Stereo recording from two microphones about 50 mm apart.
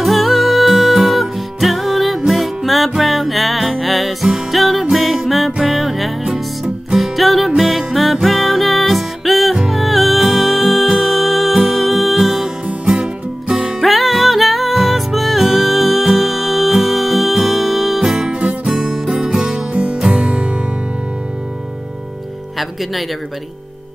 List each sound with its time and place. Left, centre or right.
0.0 s music: centre
12.8 s music: centre
13.6 s music: centre
18.4 s music: right
18.8 s music: centre